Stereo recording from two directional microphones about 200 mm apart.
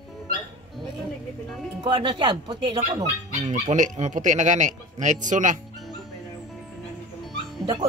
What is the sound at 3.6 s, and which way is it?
Speech, 35° right (ahead or behind).